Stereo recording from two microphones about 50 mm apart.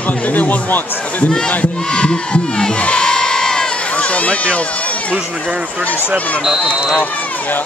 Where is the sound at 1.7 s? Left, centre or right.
Centre.